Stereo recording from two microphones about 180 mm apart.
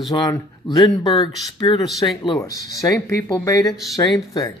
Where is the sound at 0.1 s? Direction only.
25° left (ahead or behind).